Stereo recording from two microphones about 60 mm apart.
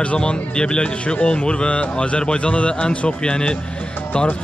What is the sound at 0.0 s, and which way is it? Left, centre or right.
Speech, centre.